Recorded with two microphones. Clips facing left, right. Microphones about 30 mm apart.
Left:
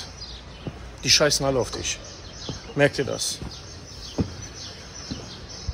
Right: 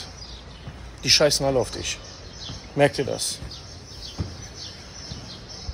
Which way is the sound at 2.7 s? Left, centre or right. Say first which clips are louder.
Right 1 dB; centre.